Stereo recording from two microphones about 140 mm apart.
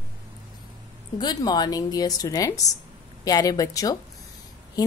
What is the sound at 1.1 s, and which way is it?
A woman's voice, 30° left (ahead or behind).